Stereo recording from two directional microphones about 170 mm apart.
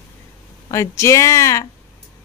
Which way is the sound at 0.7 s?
15° left (ahead or behind).